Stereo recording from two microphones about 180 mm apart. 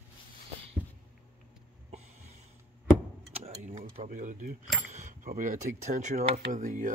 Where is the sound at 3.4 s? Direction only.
40° right (ahead or behind).